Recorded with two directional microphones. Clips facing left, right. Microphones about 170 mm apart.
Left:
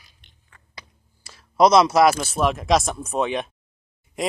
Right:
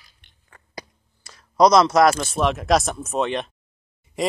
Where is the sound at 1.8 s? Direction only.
5° left (ahead or behind).